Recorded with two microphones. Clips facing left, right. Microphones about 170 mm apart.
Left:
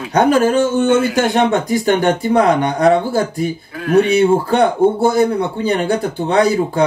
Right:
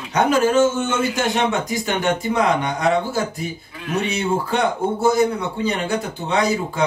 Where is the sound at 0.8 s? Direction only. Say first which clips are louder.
Left 8 dB; 60° left (ahead or behind).